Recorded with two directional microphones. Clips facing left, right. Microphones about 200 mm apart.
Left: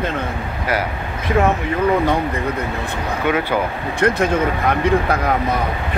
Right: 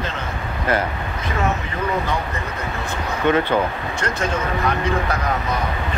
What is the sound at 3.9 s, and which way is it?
Speech, 55° left (ahead or behind).